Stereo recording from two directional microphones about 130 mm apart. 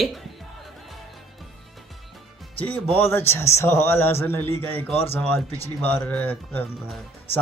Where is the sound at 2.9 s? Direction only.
20° left (ahead or behind).